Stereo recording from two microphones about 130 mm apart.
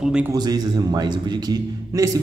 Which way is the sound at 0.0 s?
5° right (ahead or behind).